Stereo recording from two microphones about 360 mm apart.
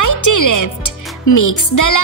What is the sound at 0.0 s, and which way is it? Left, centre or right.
Speech, left.